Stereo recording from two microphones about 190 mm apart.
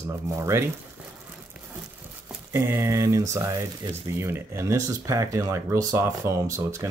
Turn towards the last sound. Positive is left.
turn(degrees=-15)  # may be behind; listen again after turning